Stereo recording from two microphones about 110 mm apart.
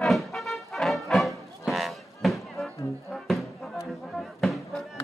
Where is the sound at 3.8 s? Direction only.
Centre (ahead or behind).